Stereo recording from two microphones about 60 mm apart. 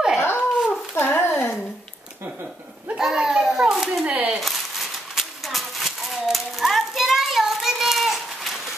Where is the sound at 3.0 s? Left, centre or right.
Centre.